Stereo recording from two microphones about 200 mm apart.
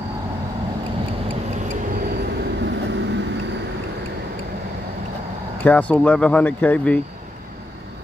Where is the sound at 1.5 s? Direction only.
40° right (ahead or behind).